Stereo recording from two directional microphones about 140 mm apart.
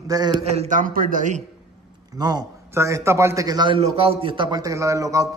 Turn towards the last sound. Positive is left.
turn(degrees=-25)  # may be behind; listen again after turning